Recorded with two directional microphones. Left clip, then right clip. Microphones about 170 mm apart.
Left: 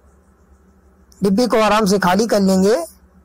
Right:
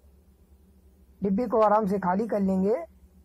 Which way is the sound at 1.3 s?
35° left (ahead or behind).